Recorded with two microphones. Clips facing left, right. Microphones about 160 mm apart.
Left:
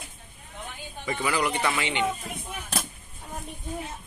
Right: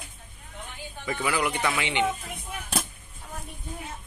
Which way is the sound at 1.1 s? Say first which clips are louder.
Left 1 dB; 5° right (ahead or behind).